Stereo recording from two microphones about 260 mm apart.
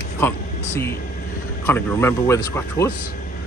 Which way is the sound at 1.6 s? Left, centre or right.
Centre.